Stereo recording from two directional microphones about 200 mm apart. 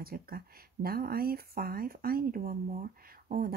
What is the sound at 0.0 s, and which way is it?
Speech, 50° right (ahead or behind).